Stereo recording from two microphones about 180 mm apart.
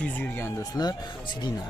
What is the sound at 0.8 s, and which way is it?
Speech, 20° left (ahead or behind).